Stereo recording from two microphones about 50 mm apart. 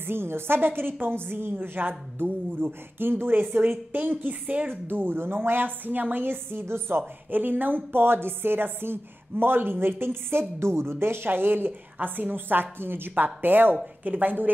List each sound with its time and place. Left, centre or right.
0.0 s a woman's voice: right
4.6 s a woman's voice: right